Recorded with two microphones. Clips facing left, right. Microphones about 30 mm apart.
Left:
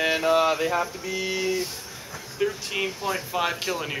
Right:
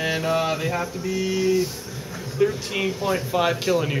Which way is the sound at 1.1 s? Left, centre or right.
Left.